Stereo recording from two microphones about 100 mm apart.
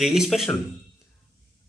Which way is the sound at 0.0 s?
5° right (ahead or behind).